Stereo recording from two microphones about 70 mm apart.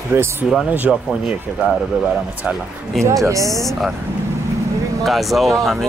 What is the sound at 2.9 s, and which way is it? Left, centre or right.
Speech, centre.